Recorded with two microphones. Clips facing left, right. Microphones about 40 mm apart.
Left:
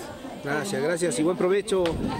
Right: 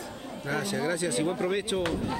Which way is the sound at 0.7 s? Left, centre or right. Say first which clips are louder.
Left 4 dB; left.